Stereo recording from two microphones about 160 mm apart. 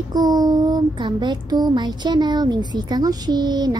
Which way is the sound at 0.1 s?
25° right (ahead or behind).